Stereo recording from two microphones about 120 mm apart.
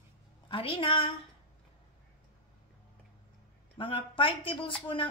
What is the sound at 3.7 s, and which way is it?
Speech, 45° left (ahead or behind).